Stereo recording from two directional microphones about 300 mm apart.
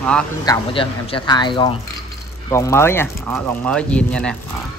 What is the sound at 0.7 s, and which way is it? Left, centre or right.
Speech, centre.